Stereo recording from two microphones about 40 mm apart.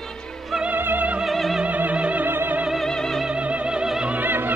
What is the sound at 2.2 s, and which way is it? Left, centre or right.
Opera, right.